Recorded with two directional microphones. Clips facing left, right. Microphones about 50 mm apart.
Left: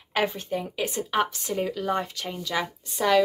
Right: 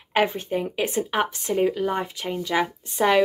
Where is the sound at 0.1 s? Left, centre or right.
Right.